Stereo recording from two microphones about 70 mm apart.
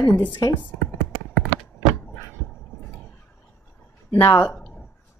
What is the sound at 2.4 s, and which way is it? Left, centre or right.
Dog, centre.